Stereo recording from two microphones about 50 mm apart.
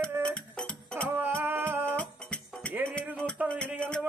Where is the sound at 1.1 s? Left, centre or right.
Right.